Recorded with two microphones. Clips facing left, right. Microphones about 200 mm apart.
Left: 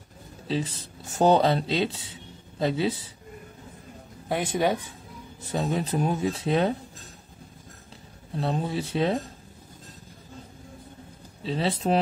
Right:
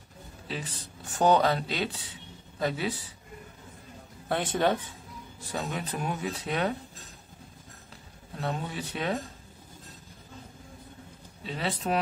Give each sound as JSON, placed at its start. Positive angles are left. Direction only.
{"t": 0.5, "sound": "speech", "side_deg": 25}
{"t": 4.3, "sound": "speech", "side_deg": 10}
{"t": 5.5, "sound": "speech", "side_deg": 25}
{"t": 8.4, "sound": "speech", "side_deg": 30}
{"t": 11.4, "sound": "speech", "side_deg": 30}